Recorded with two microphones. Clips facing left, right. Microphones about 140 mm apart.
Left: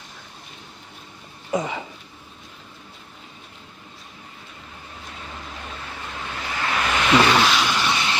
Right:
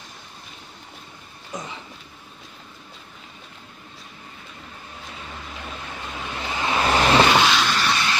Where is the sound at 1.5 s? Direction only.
70° left (ahead or behind).